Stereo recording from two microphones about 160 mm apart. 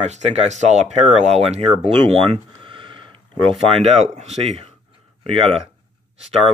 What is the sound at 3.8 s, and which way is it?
Speech, 45° right (ahead or behind).